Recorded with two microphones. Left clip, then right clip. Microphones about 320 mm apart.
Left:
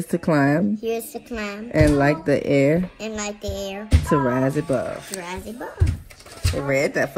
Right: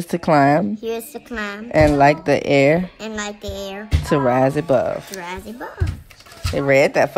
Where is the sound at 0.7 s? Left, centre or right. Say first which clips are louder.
Even; centre.